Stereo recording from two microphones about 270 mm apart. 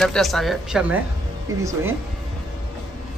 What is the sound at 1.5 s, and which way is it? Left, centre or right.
Speech, centre.